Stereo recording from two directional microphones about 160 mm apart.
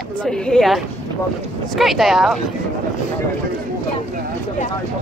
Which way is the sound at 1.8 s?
Centre (ahead or behind).